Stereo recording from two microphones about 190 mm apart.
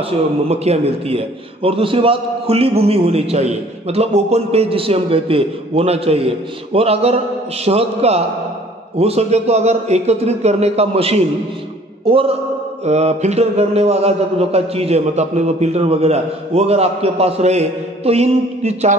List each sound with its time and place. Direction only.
0.5 s a man's voice: 30° right (ahead or behind)